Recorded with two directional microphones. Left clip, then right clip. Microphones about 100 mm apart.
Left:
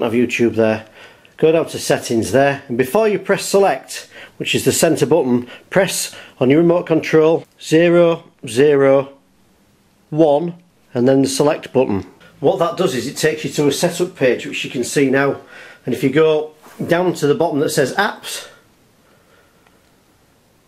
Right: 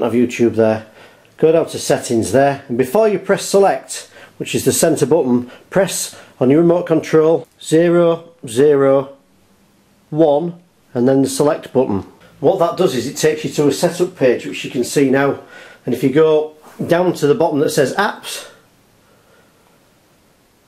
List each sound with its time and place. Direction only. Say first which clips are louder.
0.0 s speech: right 1 dB; 20° left (ahead or behind); by 9.0 s 35° left (ahead or behind)
10.1 s speech: even; 35° left (ahead or behind)
12.4 s speech: right 2 dB; 25° left (ahead or behind)
16.8 s speech: right 2 dB; 10° left (ahead or behind)